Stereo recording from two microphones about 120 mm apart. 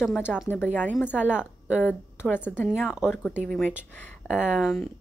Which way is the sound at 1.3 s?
10° right (ahead or behind).